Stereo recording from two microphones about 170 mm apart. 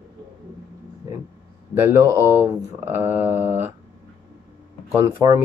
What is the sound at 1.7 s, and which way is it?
Speech, 15° right (ahead or behind).